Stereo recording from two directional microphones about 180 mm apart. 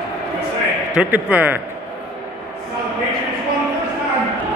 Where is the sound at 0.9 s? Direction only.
10° right (ahead or behind).